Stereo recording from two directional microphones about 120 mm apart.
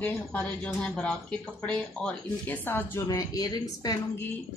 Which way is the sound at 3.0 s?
30° left (ahead or behind).